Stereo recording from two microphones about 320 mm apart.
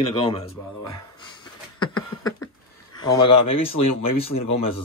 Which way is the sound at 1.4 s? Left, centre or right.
Centre.